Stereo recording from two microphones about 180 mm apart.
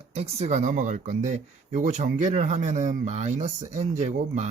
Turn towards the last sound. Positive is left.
turn(degrees=-40)  # may be behind; listen again after turning